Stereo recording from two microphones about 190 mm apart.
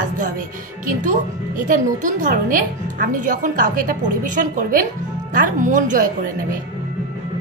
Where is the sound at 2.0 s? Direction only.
40° right (ahead or behind).